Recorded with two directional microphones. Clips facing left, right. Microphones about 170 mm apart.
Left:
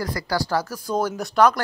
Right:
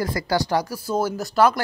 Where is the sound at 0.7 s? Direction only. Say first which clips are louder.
Right 1 dB; 10° right (ahead or behind).